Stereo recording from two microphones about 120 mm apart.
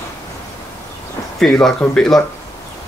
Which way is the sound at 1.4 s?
5° left (ahead or behind).